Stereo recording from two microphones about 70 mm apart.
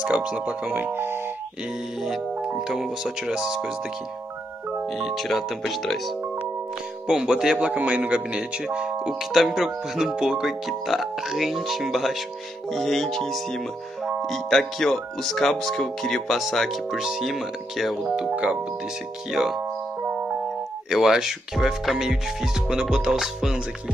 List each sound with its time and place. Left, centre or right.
0.0 s speech: centre
0.9 s speech: right
2.4 s speech: centre
4.9 s speech: centre
18.3 s speech: centre
19.3 s speech: centre
20.0 s music: right
20.9 s speech: centre